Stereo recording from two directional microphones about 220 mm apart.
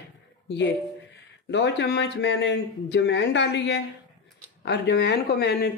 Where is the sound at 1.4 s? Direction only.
50° left (ahead or behind).